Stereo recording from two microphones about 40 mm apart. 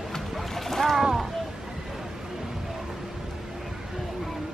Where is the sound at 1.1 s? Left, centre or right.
Centre.